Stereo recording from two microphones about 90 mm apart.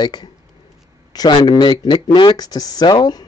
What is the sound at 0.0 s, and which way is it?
Speech, 50° left (ahead or behind).